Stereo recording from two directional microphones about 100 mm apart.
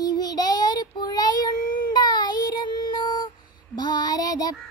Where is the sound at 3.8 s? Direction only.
45° left (ahead or behind).